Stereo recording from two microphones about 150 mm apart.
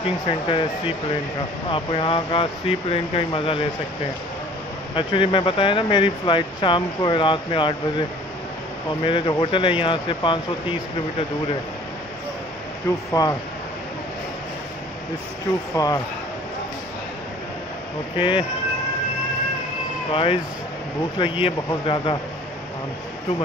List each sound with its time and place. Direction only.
0.5 s speech: 35° left (ahead or behind)
4.9 s speech: 35° left (ahead or behind)
9.0 s speech: 35° left (ahead or behind)
13.1 s speech: 25° left (ahead or behind)
15.7 s speech: 25° left (ahead or behind)
18.1 s speech: 35° left (ahead or behind)
20.1 s speech: 35° left (ahead or behind)